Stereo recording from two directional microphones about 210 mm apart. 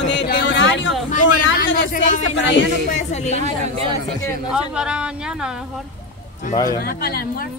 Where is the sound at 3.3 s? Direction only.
30° right (ahead or behind).